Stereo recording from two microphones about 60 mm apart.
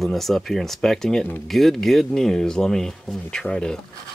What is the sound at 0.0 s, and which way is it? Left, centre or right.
Speech, centre.